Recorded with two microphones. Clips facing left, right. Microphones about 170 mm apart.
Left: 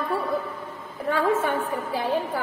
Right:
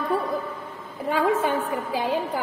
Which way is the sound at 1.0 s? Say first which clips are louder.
Right 1 dB; 20° right (ahead or behind).